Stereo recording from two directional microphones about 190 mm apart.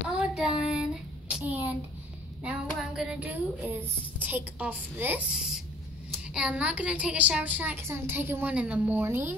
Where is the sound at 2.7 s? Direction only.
Centre (ahead or behind).